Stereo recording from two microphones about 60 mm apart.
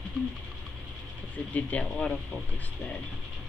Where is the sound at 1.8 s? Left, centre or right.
Centre.